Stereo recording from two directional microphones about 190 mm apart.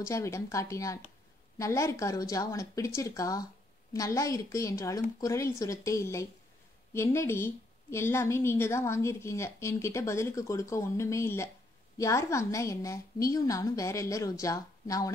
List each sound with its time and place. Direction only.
0.0 s a woman's voice: 15° left (ahead or behind)